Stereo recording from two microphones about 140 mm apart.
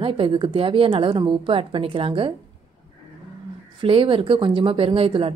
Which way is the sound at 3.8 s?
40° right (ahead or behind).